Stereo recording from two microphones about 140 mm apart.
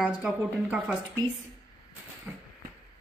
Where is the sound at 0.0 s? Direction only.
10° right (ahead or behind).